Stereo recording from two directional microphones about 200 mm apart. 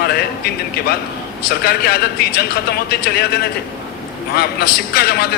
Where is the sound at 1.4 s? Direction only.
50° left (ahead or behind).